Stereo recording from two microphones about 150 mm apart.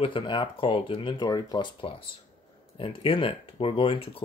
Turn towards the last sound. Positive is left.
turn(degrees=35)  # may be behind; listen again after turning